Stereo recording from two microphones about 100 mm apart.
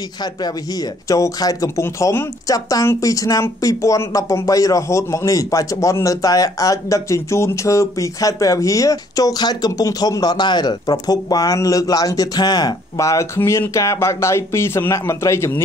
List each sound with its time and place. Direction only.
1.0 s speech: 35° left (ahead or behind)